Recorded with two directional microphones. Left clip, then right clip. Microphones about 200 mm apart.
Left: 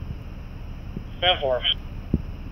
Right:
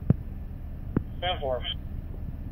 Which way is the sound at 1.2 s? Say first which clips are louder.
Left 9 dB; 25° left (ahead or behind).